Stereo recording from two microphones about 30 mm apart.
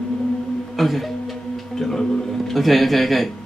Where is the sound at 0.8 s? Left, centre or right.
Centre.